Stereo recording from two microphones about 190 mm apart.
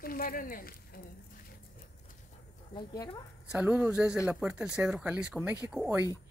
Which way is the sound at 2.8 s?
25° left (ahead or behind).